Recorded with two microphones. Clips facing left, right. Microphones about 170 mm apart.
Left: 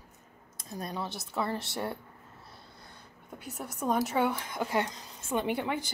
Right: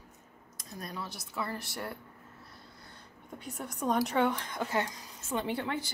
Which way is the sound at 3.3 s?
5° left (ahead or behind).